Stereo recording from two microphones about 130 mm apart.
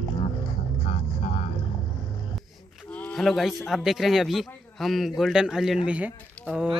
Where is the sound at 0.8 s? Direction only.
60° left (ahead or behind).